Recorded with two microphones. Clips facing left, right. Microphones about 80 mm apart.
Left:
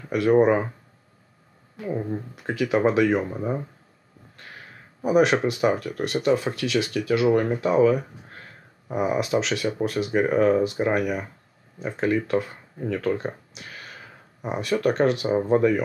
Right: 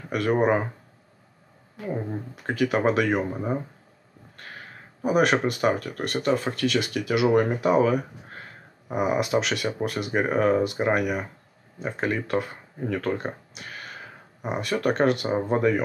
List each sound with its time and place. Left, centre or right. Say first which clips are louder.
0.1 s speech: left 4 dB; centre
1.9 s speech: left 2 dB; centre
5.0 s speech: left 2 dB; centre